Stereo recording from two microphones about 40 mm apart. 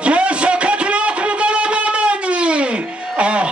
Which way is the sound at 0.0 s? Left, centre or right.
Right.